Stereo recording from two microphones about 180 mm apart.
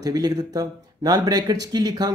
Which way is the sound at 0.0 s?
20° right (ahead or behind).